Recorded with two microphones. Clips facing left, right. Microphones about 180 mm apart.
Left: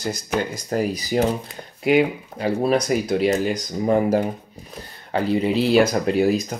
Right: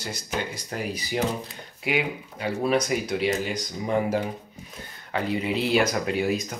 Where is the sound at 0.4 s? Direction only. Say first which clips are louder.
Left 8 dB; 40° left (ahead or behind).